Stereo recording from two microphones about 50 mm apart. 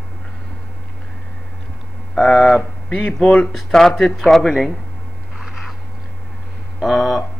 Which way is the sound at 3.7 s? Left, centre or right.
Centre.